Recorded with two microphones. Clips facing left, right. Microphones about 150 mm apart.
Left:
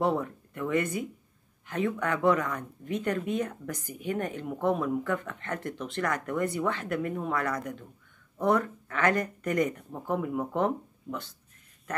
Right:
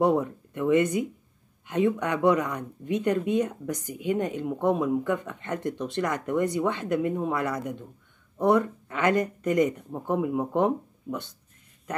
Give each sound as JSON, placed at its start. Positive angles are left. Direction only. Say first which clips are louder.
{"t": 0.0, "sound": "speech", "louder": "right 5 dB", "side_deg": -15}